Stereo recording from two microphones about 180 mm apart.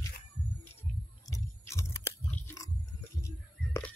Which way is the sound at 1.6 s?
15° left (ahead or behind).